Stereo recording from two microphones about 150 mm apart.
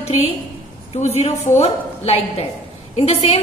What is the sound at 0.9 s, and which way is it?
Speech, 45° left (ahead or behind).